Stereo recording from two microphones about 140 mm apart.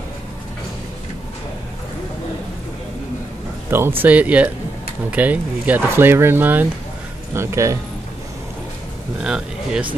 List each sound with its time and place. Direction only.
3.7 s speech: 15° right (ahead or behind)
9.2 s speech: 5° right (ahead or behind)